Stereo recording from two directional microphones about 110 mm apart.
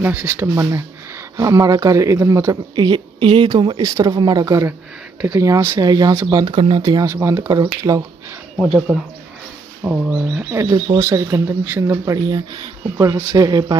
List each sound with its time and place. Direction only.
0.0 s speech: 15° right (ahead or behind)
2.7 s speech: 45° right (ahead or behind)
6.5 s speech: 55° right (ahead or behind)
6.8 s speech: 35° right (ahead or behind)
8.9 s speech: 5° right (ahead or behind)
11.0 s speech: 30° right (ahead or behind)
13.5 s speech: 40° right (ahead or behind)